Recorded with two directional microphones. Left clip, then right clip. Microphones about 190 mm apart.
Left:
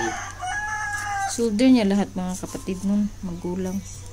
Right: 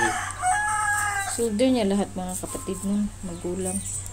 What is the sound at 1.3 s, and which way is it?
Speech, 45° left (ahead or behind).